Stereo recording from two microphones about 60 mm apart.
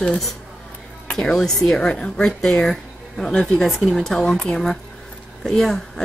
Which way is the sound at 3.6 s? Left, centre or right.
Centre.